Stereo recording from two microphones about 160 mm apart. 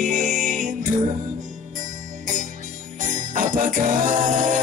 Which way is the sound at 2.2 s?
55° right (ahead or behind).